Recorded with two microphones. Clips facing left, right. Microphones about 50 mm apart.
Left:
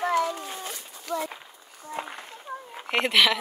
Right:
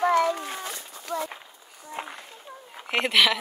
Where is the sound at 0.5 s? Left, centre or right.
Right.